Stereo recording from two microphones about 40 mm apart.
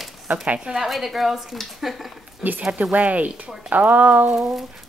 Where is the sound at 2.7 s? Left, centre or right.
Right.